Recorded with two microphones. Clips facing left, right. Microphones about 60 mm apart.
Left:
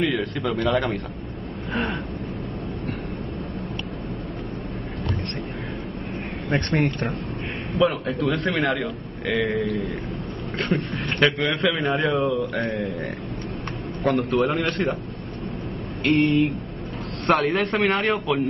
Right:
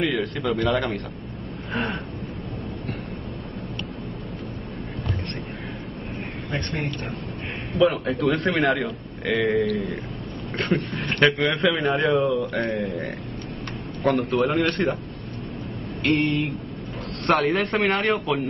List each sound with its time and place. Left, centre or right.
0.0 s a man's voice: centre
6.5 s a man's voice: left
7.7 s a man's voice: centre
16.0 s a man's voice: centre